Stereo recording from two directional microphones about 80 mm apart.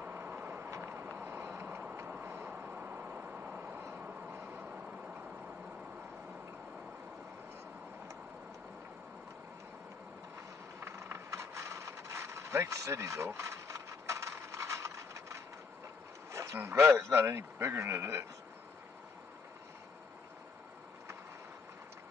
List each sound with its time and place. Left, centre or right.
0.0 s vehicle: right
10.8 s mechanisms: right
16.3 s speech: right